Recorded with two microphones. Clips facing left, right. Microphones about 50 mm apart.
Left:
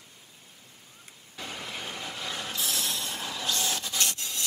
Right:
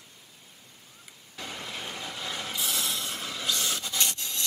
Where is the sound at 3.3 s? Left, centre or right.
Centre.